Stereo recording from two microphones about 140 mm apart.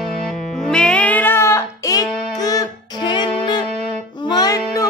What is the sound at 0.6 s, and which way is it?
Music, 5° left (ahead or behind).